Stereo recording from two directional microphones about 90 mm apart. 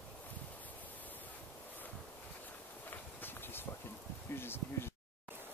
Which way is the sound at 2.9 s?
25° left (ahead or behind).